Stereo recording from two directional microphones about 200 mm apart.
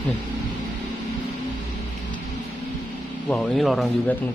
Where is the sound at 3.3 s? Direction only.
5° left (ahead or behind).